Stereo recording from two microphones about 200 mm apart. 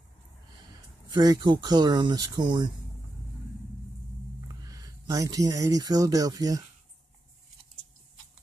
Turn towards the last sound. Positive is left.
turn(degrees=-20)  # may be behind; listen again after turning